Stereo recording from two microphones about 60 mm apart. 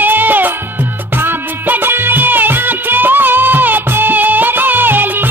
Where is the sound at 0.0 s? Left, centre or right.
Right.